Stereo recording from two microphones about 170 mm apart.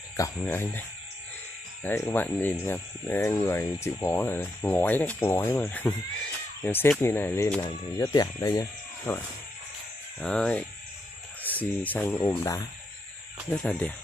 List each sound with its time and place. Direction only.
0.2 s speech: 15° left (ahead or behind)
9.1 s speech: 10° left (ahead or behind)
12.3 s speech: 20° left (ahead or behind)
13.5 s speech: 5° left (ahead or behind)